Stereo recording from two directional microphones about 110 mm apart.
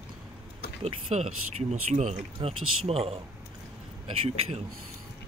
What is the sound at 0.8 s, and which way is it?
Speech, 80° right.